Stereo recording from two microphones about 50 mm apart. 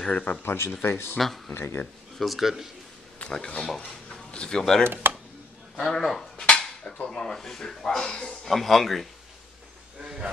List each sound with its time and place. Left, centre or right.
0.1 s speech: left
0.4 s speech: left
1.1 s speech: centre
1.5 s speech: left
2.1 s speech: centre
3.2 s speech: centre
3.8 s a sound: centre
5.1 s a sound: right
5.8 s speech: centre
6.3 s a sound: left
6.6 s dishes: centre
7.0 s speech: centre
10.0 s hiss: centre